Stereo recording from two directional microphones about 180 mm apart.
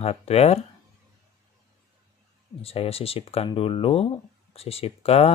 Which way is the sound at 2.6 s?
35° left (ahead or behind).